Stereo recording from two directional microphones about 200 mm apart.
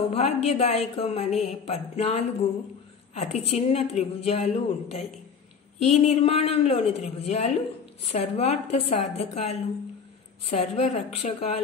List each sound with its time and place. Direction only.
0.1 s a woman's voice: 30° left (ahead or behind)